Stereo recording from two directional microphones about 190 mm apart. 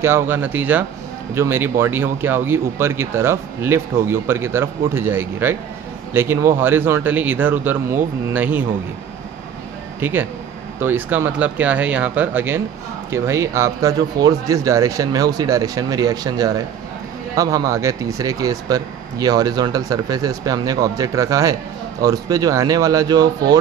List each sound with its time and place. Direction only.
0.0 s speech: 10° right (ahead or behind)
9.9 s speech: 10° right (ahead or behind)